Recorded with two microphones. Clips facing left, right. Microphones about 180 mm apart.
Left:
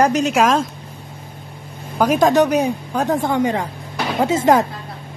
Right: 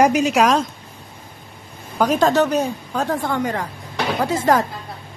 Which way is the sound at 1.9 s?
10° left (ahead or behind).